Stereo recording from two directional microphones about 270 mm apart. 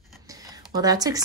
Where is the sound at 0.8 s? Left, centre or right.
Centre.